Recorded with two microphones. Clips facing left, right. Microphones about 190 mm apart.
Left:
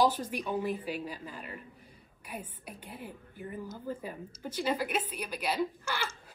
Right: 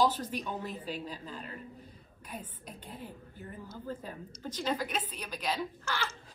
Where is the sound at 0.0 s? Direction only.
10° left (ahead or behind).